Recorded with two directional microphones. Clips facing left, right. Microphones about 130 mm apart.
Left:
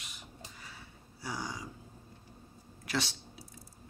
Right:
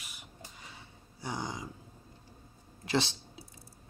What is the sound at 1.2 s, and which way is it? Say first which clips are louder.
Speech: right 2 dB; 20° right (ahead or behind).